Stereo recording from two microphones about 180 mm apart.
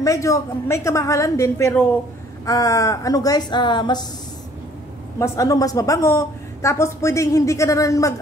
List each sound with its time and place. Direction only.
0.0 s speech: 15° left (ahead or behind)
5.2 s speech: 15° left (ahead or behind)